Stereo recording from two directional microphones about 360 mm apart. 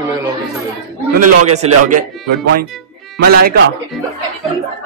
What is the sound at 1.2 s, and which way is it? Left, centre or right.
Speech, right.